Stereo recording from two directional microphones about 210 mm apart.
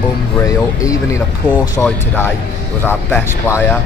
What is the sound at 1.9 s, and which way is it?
Speech, 10° left (ahead or behind).